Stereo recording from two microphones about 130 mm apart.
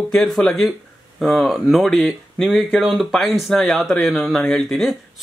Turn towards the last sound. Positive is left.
turn(degrees=5)  # may be behind; listen again after turning